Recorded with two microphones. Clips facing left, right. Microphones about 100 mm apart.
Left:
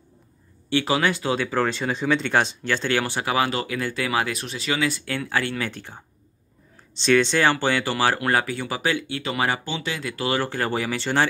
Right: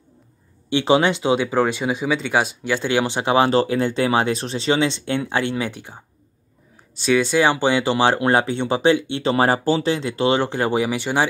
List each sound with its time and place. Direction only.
0.7 s speech: 25° right (ahead or behind)